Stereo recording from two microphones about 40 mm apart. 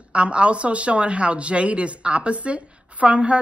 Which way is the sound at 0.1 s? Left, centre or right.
Right.